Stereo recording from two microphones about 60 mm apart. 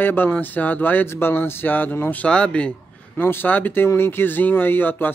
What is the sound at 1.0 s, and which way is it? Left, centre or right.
Speech, left.